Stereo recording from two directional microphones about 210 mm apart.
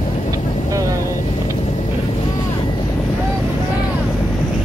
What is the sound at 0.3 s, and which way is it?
Vehicle, 15° right (ahead or behind).